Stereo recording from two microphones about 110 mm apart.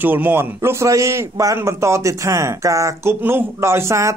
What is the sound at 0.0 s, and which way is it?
A man's voice, 15° right (ahead or behind).